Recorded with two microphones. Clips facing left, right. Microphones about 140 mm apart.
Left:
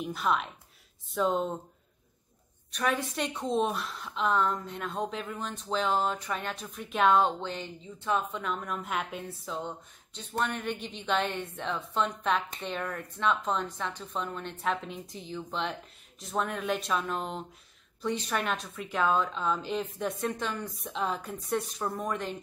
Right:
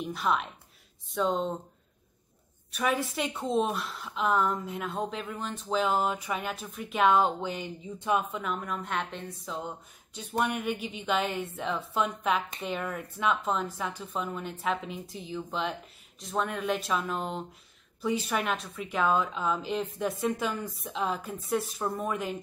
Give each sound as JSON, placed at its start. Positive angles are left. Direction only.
{"t": 0.0, "sound": "a woman's voice", "side_deg": 0}
{"t": 2.7, "sound": "a woman's voice", "side_deg": -5}
{"t": 8.3, "sound": "a woman's voice", "side_deg": -5}